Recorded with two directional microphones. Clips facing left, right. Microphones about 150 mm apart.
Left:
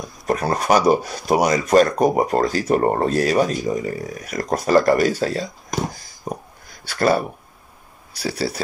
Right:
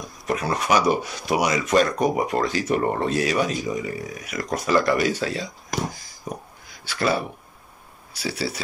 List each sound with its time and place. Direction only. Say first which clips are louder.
0.3 s speech: left 4 dB; 40° left (ahead or behind)
6.3 s a sound: left 4 dB; 35° left (ahead or behind)
6.7 s speech: left 5 dB; 45° left (ahead or behind)